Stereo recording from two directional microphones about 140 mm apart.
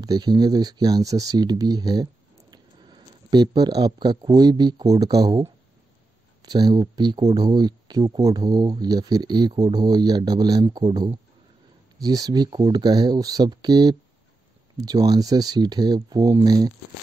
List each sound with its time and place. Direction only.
0.0 s speech: 30° right (ahead or behind)